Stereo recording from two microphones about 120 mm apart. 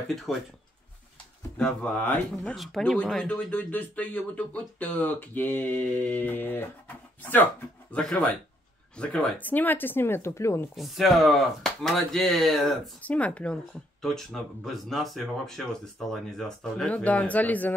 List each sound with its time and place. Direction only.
0.3 s speech: centre (ahead or behind)
1.6 s speech: 10° left (ahead or behind)
10.8 s speech: centre (ahead or behind)
13.0 s speech: 10° left (ahead or behind)